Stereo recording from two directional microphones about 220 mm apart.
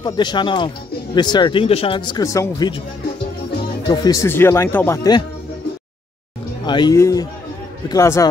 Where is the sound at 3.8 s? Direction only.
15° left (ahead or behind).